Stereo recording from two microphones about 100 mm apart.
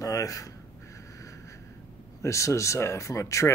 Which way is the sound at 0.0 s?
35° left (ahead or behind).